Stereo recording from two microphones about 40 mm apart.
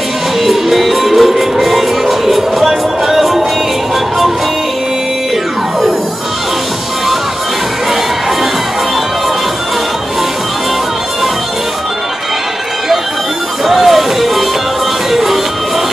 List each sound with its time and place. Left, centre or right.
0.4 s music: centre
13.7 s music: centre